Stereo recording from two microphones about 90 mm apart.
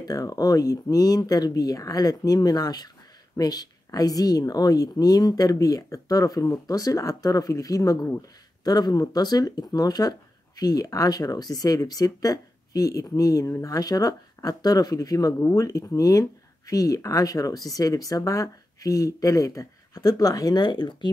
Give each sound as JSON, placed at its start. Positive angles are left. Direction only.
{"t": 0.0, "sound": "speech", "side_deg": 45}